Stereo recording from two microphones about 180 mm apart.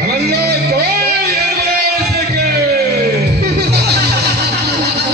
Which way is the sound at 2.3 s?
65° right (ahead or behind).